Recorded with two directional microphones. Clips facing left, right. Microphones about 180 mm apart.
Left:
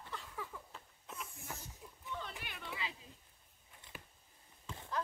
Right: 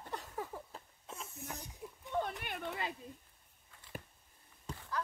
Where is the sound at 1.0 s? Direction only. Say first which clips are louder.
Right 2 dB; 25° right (ahead or behind).